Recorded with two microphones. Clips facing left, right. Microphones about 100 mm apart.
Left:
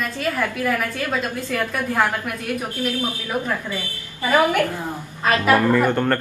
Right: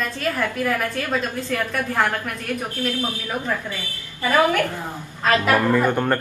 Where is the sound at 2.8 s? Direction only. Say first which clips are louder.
Left 1 dB; 15° left (ahead or behind).